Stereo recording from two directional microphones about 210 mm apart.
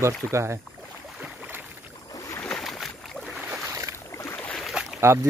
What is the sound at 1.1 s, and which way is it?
Boat, 5° right (ahead or behind).